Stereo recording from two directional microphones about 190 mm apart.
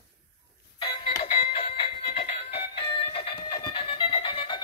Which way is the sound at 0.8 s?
30° left (ahead or behind).